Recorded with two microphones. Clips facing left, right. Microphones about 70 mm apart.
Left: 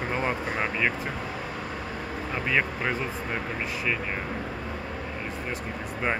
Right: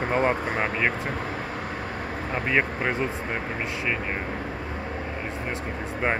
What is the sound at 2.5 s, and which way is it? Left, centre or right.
Speech, right.